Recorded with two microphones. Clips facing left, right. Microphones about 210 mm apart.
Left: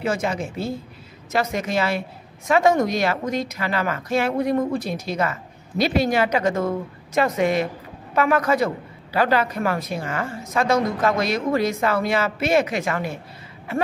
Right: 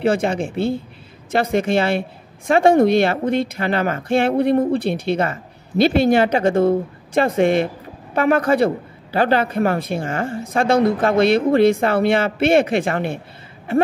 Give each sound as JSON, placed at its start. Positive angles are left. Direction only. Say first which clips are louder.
{"t": 0.0, "sound": "speech", "louder": "right 6 dB", "side_deg": -30}